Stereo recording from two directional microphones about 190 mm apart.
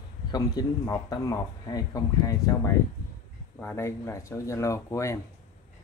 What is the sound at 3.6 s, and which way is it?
Speech, 15° left (ahead or behind).